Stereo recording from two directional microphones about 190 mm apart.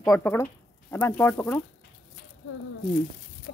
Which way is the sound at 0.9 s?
10° left (ahead or behind).